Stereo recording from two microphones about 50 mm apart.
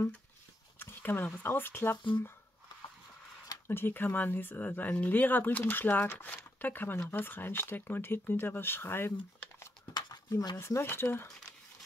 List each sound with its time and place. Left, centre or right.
0.7 s speech: left
3.6 s speech: left
10.3 s speech: left
10.8 s speech: left